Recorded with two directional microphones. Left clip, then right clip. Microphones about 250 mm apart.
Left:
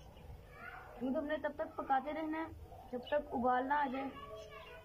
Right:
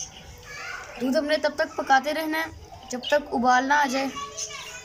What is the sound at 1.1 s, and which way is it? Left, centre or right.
Speech, right.